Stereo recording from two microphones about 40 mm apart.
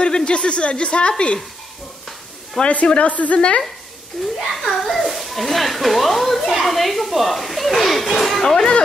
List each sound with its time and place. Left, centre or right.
0.0 s a woman's voice: left
2.6 s speech: centre
2.9 s a woman's voice: left
3.3 s a woman's voice: left
4.4 s a child's voice: centre